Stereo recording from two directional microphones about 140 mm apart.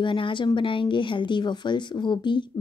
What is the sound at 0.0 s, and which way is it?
Speech, 35° left (ahead or behind).